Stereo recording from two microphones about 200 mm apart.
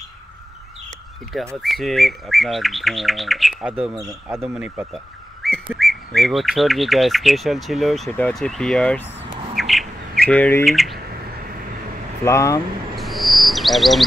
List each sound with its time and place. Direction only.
1.6 s speech: centre (ahead or behind)
4.0 s speech: 15° right (ahead or behind); by 9.1 s 5° left (ahead or behind)
9.6 s bird: centre (ahead or behind)
12.3 s speech: 15° left (ahead or behind)
12.9 s bird: centre (ahead or behind)